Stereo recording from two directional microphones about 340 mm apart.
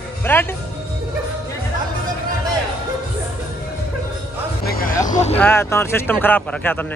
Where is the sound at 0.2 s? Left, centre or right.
Centre.